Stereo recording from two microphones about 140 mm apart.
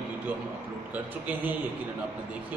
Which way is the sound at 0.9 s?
10° right (ahead or behind).